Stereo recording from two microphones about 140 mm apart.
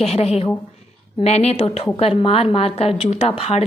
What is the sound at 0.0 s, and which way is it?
A woman's voice, 50° left (ahead or behind).